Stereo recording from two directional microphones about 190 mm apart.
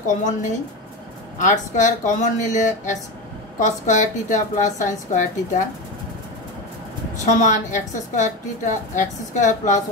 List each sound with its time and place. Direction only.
0.1 s a woman's voice: 40° left (ahead or behind)
7.2 s a woman's voice: 40° left (ahead or behind)